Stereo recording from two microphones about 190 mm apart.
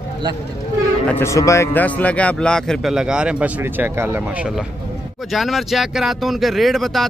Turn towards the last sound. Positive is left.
turn(degrees=0)  # may be behind; listen again after turning